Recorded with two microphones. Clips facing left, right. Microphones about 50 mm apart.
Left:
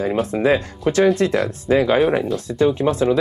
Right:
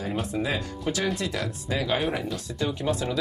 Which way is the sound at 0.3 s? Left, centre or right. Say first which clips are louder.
Left 10 dB; left.